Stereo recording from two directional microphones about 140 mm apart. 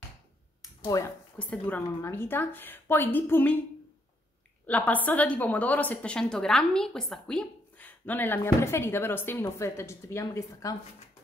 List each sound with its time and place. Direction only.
0.6 s a sound: 25° left (ahead or behind)
1.4 s a woman's voice: 10° left (ahead or behind)
4.6 s a woman's voice: 10° left (ahead or behind)